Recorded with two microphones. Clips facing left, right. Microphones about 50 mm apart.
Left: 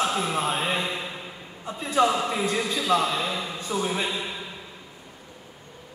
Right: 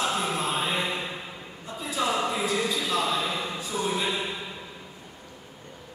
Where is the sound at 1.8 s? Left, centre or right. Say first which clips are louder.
Left 5 dB; left.